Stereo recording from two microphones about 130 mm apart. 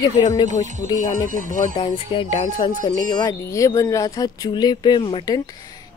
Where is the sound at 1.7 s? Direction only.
40° left (ahead or behind).